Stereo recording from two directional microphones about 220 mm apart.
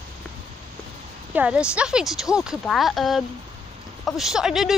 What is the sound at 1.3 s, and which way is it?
Speech, 5° right (ahead or behind).